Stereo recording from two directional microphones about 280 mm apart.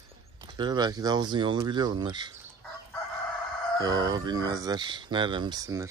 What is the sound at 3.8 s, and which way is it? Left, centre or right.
Speech, centre.